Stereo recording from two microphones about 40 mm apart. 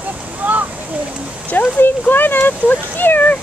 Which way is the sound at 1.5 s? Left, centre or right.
Left.